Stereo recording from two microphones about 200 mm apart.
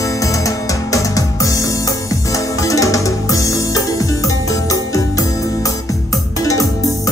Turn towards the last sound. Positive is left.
turn(degrees=15)  # may be behind; listen again after turning